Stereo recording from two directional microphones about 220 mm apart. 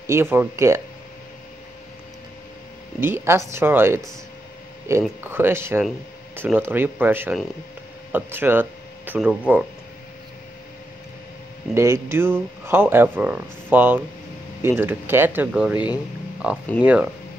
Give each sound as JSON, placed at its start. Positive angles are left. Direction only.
{"t": 0.0, "sound": "speech", "side_deg": -10}
{"t": 3.0, "sound": "speech", "side_deg": -10}
{"t": 11.7, "sound": "speech", "side_deg": -10}